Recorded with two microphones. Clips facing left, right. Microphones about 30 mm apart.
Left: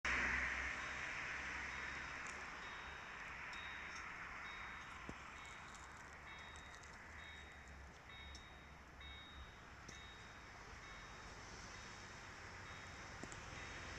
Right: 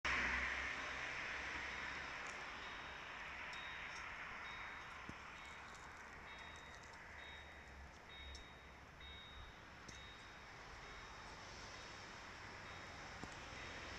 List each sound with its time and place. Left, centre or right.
0.0 s vehicle: centre
2.2 s a sound: right
13.2 s vehicle: right